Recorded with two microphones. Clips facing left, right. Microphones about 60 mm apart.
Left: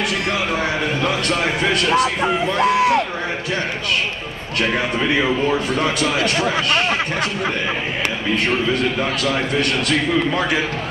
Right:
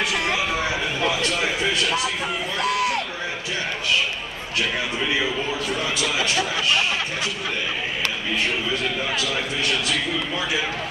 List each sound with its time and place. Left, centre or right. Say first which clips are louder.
1.0 s a man's voice: left 1 dB; left
2.2 s a sound: left 7 dB; left
5.1 s a man's voice: left 8 dB; left
9.2 s a man's voice: left 6 dB; left